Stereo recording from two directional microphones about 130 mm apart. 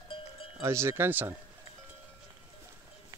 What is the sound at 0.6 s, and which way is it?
Speech, 20° right (ahead or behind).